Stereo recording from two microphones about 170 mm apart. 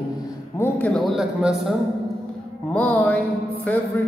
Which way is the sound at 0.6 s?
10° left (ahead or behind).